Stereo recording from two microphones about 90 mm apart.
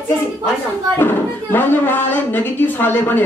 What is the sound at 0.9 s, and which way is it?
A woman's voice, 25° left (ahead or behind).